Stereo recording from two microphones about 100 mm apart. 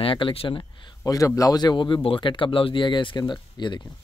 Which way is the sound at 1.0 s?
35° left (ahead or behind).